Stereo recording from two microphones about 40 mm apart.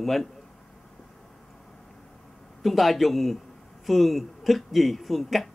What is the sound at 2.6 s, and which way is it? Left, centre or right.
Speech, centre.